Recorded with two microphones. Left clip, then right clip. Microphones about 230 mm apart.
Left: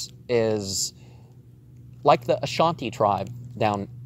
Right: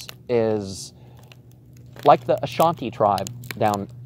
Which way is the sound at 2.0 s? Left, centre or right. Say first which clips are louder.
Right 3 dB; left.